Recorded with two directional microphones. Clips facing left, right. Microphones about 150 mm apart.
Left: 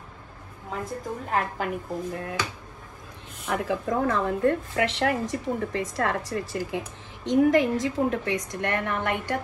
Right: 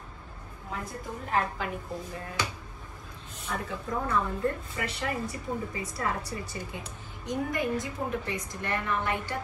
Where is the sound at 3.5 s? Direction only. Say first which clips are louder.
Left 7 dB; 90° left.